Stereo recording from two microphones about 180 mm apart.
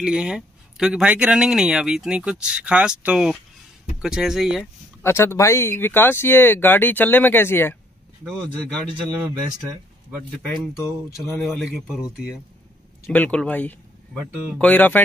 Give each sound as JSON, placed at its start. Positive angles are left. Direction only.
{"t": 0.0, "sound": "speech", "side_deg": -5}
{"t": 5.0, "sound": "speech", "side_deg": 15}
{"t": 10.3, "sound": "speech", "side_deg": 0}
{"t": 13.1, "sound": "speech", "side_deg": 5}